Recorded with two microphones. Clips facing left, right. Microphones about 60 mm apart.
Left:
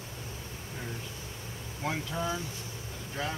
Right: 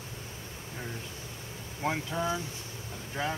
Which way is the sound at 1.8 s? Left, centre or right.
Centre.